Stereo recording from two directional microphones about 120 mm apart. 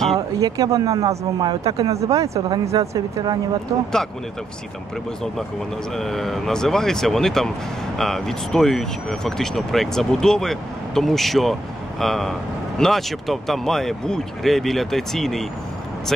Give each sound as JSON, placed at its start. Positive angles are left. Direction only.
{"t": 0.4, "sound": "speech", "side_deg": -30}
{"t": 5.9, "sound": "speech", "side_deg": 0}